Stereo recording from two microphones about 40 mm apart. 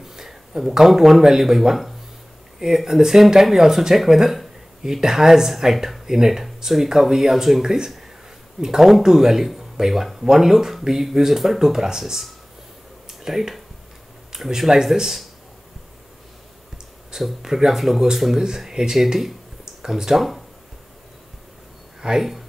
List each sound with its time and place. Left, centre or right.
0.0 s speech: centre
17.1 s speech: centre
22.0 s speech: centre